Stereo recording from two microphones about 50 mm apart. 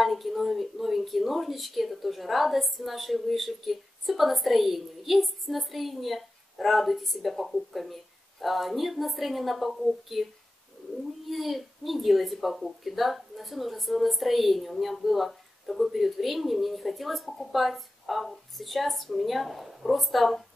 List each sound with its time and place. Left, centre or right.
0.0 s a woman's voice: centre
11.2 s a woman's voice: centre